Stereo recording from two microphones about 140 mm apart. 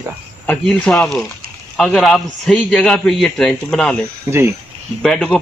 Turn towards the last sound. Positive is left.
turn(degrees=5)  # may be behind; listen again after turning